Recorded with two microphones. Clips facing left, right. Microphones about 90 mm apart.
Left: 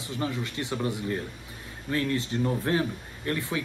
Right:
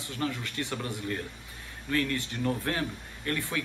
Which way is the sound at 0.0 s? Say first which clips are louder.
Left 2 dB; 20° left (ahead or behind).